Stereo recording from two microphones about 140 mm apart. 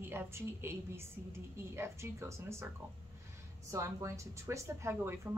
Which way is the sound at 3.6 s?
20° right (ahead or behind).